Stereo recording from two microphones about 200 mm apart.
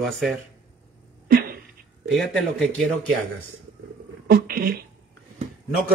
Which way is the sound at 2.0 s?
Centre (ahead or behind).